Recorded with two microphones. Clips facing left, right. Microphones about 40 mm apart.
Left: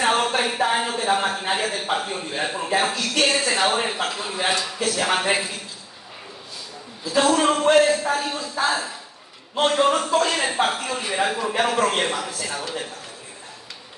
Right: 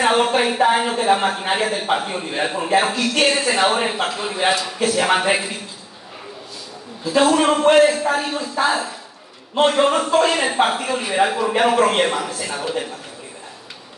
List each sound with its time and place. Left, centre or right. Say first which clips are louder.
0.0 s a man's voice: right 4 dB; right
7.2 s a man's voice: right 3 dB; centre